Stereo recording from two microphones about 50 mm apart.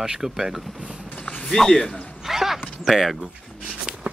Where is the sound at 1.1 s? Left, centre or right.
Left.